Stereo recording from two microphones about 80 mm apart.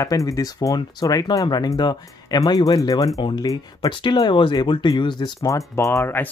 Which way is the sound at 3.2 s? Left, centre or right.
Left.